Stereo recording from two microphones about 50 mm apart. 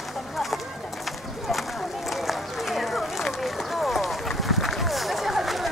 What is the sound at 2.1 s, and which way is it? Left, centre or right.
Run, centre.